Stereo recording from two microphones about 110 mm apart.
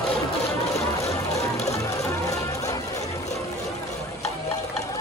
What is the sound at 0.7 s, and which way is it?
Music, 30° left (ahead or behind).